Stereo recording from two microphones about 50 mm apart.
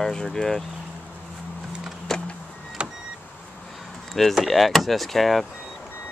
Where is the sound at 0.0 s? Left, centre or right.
Centre.